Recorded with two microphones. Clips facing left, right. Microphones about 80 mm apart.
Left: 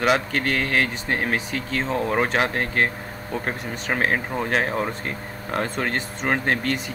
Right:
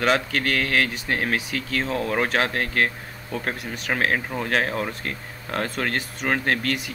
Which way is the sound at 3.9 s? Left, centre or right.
Centre.